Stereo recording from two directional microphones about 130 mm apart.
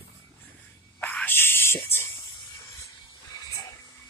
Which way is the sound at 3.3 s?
25° left (ahead or behind).